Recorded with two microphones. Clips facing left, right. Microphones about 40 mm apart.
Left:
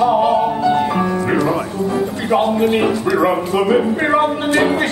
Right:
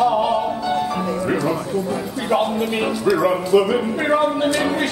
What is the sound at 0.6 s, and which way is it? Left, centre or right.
Music, left.